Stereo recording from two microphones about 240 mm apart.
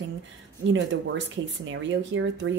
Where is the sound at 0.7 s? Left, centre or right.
Right.